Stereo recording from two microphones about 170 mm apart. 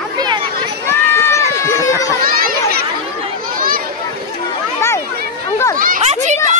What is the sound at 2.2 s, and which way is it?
Children playing, 55° right (ahead or behind).